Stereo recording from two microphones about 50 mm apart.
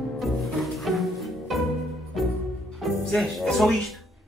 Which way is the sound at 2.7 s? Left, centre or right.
Centre.